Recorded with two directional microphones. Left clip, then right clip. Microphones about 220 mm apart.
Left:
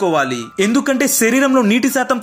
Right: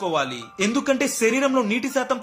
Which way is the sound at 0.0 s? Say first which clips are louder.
Left 8 dB; 15° left (ahead or behind).